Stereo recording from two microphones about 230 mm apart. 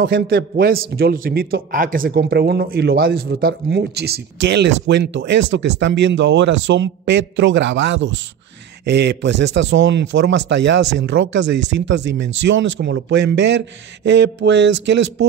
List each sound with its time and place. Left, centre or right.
0.0 s a man's voice: right